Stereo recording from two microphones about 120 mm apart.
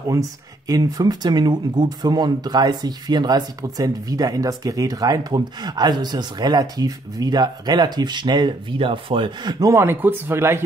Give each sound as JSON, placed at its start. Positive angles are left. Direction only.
{"t": 0.1, "sound": "speech", "side_deg": -30}